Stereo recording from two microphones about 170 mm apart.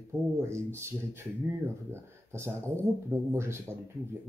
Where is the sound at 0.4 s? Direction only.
15° right (ahead or behind).